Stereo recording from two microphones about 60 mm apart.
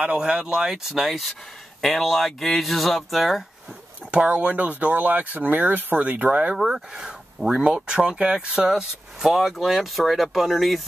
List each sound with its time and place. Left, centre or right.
0.0 s speech: centre
4.3 s speech: right
6.5 s speech: centre